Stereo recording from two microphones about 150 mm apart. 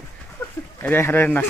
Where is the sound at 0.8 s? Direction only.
15° left (ahead or behind).